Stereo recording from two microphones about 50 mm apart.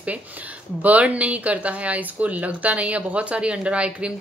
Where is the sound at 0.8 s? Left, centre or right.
Right.